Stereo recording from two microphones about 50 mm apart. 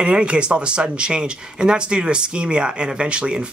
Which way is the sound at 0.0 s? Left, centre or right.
Right.